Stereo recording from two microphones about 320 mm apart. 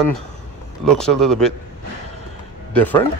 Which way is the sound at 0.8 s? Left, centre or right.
Centre.